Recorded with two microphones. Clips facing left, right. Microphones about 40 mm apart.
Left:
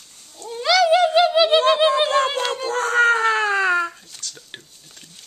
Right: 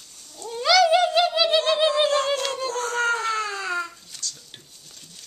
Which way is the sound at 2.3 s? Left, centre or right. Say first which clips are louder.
Left 2 dB; left.